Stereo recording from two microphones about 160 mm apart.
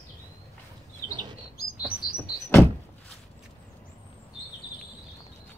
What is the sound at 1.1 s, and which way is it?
Bird, 30° right (ahead or behind).